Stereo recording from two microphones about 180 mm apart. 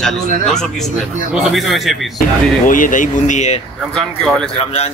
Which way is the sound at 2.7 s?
45° left (ahead or behind).